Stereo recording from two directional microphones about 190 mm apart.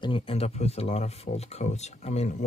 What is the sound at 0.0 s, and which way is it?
Speech, 30° left (ahead or behind).